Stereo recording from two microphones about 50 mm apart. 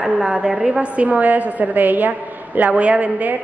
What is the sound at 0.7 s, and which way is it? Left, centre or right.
A woman's voice, right.